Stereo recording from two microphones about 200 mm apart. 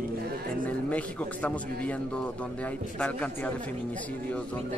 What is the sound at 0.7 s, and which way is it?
A man's voice, 5° left (ahead or behind).